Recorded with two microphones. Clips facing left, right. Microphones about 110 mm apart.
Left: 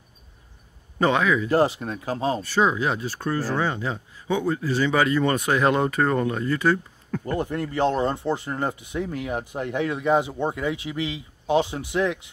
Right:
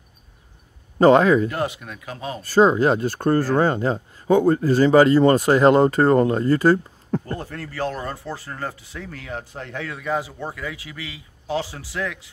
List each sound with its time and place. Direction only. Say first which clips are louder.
0.9 s speech: right 7 dB; 40° right (ahead or behind)
1.5 s speech: left 6 dB; 30° left (ahead or behind)
2.4 s speech: right 10 dB; 40° right (ahead or behind)
7.3 s speech: left 5 dB; 20° left (ahead or behind)